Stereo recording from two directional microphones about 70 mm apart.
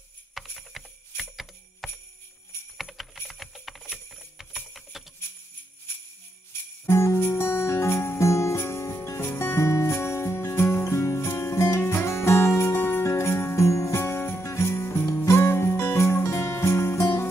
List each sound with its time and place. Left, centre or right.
0.3 s jingle bell: centre
2.8 s a sound: centre
3.3 s music: centre
4.6 s jingle bell: centre
6.9 s music: left
15.2 s music: left